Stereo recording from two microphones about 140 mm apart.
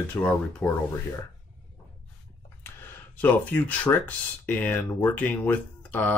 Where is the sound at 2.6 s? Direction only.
15° left (ahead or behind).